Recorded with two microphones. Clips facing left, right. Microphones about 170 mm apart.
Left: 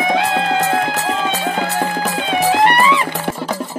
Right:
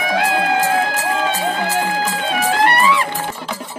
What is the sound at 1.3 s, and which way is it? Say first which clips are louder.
Music: even; 65° left (ahead or behind).